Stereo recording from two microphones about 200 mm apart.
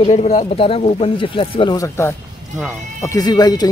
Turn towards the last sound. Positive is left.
turn(degrees=20)  # may be behind; listen again after turning